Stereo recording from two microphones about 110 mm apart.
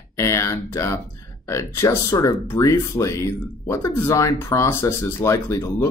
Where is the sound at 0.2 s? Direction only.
25° left (ahead or behind).